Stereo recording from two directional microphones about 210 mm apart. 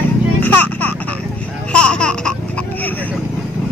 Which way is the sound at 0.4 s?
10° left (ahead or behind).